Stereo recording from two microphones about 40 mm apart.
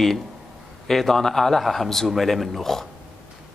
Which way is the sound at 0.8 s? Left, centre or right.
Centre.